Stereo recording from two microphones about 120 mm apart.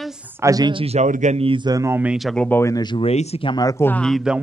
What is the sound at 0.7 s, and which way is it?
Speech, 55° right (ahead or behind).